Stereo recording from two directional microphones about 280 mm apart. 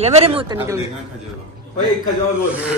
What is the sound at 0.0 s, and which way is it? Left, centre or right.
Speech, right.